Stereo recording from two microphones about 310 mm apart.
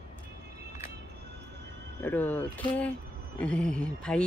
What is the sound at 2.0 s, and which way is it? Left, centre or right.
Speech, centre.